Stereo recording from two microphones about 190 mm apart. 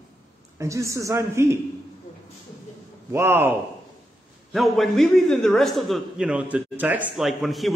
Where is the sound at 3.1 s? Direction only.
10° right (ahead or behind).